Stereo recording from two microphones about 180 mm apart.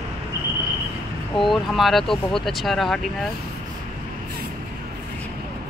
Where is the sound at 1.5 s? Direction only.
Centre (ahead or behind).